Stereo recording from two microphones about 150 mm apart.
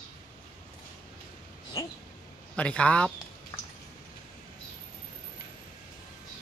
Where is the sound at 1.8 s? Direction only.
20° left (ahead or behind).